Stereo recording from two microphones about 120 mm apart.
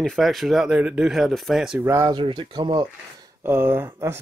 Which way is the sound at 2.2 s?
40° right (ahead or behind).